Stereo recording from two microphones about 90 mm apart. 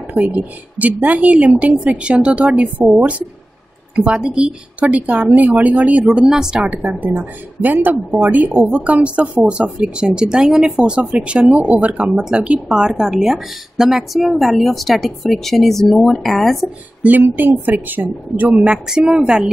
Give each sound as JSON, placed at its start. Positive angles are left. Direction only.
{"t": 0.2, "sound": "a woman's voice", "side_deg": -15}
{"t": 17.0, "sound": "speech", "side_deg": -20}
{"t": 18.5, "sound": "a woman's voice", "side_deg": -10}